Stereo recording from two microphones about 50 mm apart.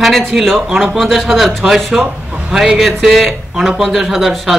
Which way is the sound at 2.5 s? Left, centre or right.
Centre.